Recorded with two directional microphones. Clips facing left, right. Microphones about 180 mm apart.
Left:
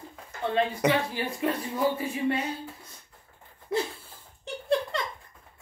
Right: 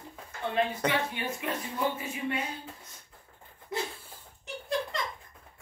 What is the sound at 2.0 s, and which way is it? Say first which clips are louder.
Speech: left 6 dB; 35° left (ahead or behind).